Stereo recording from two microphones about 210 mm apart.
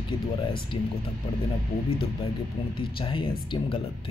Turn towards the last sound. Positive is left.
turn(degrees=25)  # may be behind; listen again after turning